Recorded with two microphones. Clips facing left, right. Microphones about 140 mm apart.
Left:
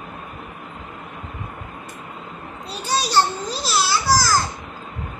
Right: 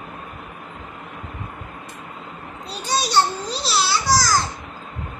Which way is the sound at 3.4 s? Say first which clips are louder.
Even; 45° left (ahead or behind).